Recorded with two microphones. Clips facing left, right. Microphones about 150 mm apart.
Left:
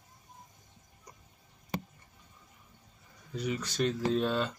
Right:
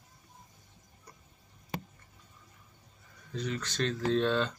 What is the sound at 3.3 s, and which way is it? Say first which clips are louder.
Speech: left 1 dB; 10° left (ahead or behind).